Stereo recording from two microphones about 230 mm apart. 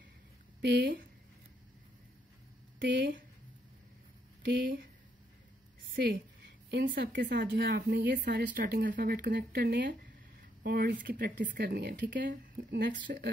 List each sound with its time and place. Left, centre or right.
0.6 s speech: right
2.8 s speech: right
4.5 s speech: right
5.9 s speech: right